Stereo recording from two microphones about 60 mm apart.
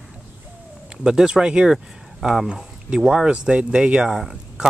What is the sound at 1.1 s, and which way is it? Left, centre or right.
Speech, centre.